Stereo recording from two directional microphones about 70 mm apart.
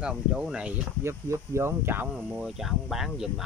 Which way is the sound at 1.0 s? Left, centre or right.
Right.